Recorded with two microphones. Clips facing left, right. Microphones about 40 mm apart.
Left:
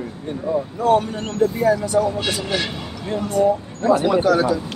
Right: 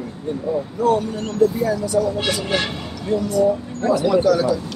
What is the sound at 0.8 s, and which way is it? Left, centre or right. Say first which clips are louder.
Speech: left 1 dB; left.